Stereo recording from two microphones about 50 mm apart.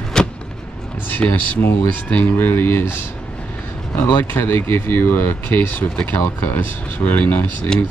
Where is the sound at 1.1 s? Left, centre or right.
Left.